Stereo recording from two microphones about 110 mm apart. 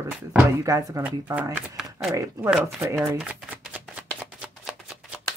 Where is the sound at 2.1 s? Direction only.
25° right (ahead or behind).